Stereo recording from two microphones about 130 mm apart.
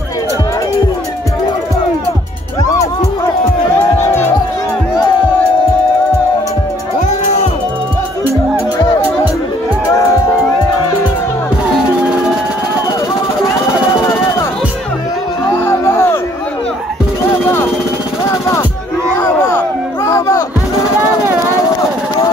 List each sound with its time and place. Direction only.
3.7 s music: 20° left (ahead or behind)
15.6 s music: 20° left (ahead or behind)
19.1 s crowd: 20° left (ahead or behind)
20.1 s music: 20° left (ahead or behind)